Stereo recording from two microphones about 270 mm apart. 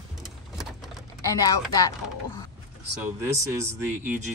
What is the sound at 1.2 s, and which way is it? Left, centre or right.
Speech, centre.